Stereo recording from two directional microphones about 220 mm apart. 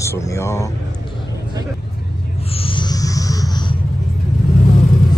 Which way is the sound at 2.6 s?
20° left (ahead or behind).